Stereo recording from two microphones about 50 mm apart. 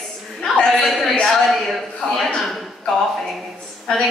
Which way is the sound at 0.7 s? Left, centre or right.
Centre.